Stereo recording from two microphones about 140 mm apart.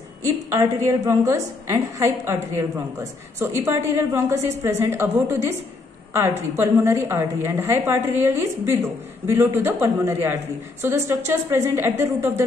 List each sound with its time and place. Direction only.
0.2 s a woman's voice: 20° right (ahead or behind)